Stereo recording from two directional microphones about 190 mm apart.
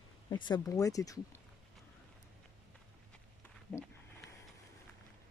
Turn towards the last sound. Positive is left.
turn(degrees=5)  # may be behind; listen again after turning